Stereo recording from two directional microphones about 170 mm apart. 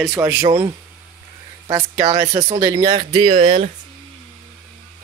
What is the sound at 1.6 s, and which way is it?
Speech, 20° right (ahead or behind).